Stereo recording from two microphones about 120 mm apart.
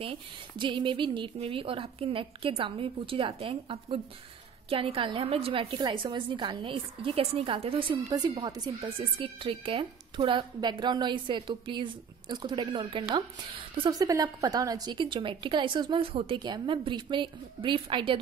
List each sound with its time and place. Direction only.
0.0 s speech: 45° right (ahead or behind)
8.1 s speech: 35° right (ahead or behind)
13.8 s speech: 30° right (ahead or behind)